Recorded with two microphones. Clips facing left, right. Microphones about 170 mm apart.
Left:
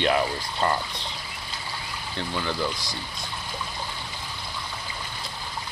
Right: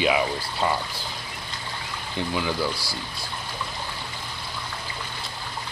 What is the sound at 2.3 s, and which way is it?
Speech, 10° right (ahead or behind).